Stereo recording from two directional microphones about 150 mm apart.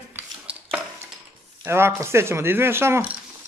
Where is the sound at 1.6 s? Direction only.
15° right (ahead or behind).